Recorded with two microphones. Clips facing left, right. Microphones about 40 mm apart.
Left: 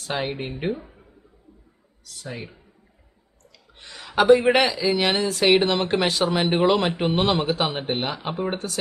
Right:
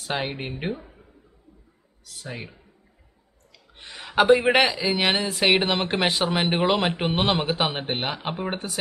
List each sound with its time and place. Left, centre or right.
0.0 s speech: centre
2.2 s speech: centre
3.7 s a sound: centre
4.5 s a man's voice: centre